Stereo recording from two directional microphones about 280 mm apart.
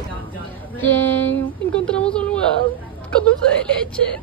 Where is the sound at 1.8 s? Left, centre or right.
Centre.